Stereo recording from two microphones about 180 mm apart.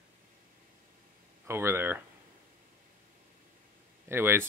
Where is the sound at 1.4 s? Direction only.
15° right (ahead or behind).